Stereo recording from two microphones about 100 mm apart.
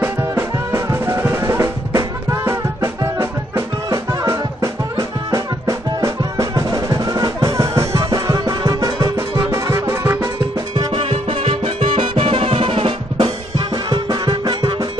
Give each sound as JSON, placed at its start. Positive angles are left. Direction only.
{"t": 0.0, "sound": "music", "side_deg": -25}
{"t": 11.0, "sound": "music", "side_deg": -70}
{"t": 13.8, "sound": "music", "side_deg": -50}